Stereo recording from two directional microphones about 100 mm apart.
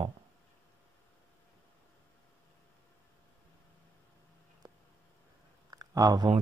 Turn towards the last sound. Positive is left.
turn(degrees=-35)  # may be behind; listen again after turning